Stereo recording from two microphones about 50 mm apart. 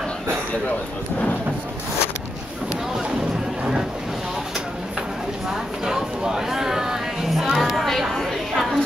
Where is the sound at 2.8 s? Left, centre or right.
Centre.